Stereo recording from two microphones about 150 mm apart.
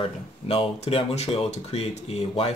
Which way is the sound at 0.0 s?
40° left (ahead or behind).